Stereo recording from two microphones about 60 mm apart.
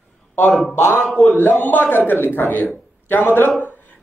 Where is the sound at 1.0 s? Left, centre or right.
Centre.